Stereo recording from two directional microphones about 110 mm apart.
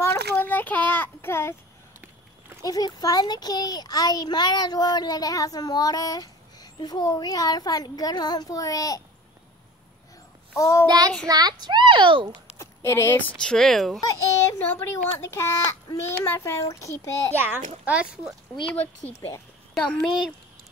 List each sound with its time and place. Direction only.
0.0 s a sound: 15° left (ahead or behind)
2.6 s a child's voice: 35° left (ahead or behind)
10.5 s child singing: 25° left (ahead or behind)
10.9 s child singing: 40° right (ahead or behind)
11.2 s a child's voice: 35° right (ahead or behind)
12.5 s a sound: 25° left (ahead or behind)
13.4 s speech: 5° left (ahead or behind)
14.0 s a child's voice: 25° left (ahead or behind)
17.4 s a child's voice: 15° right (ahead or behind)
19.9 s speech: 5° left (ahead or behind)